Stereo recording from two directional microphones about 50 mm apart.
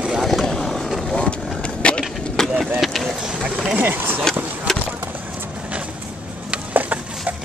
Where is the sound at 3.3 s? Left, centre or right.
Centre.